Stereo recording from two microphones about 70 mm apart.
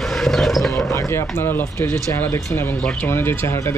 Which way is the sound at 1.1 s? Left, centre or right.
Left.